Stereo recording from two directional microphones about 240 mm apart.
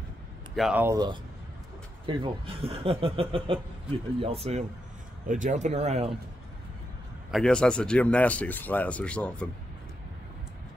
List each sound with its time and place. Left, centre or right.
0.6 s speech: centre; by 6.0 s right
7.2 s speech: centre